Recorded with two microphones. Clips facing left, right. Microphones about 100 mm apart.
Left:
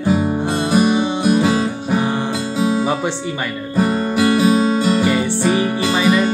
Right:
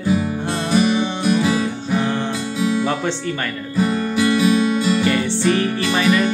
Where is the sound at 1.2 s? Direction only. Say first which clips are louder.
Left 2 dB; 35° left (ahead or behind).